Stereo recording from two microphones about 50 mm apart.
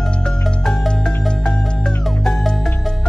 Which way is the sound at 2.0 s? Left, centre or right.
Centre.